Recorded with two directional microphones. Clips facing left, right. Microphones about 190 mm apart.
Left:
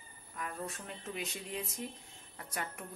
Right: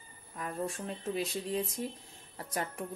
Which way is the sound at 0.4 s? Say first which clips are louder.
Right 5 dB; 30° right (ahead or behind).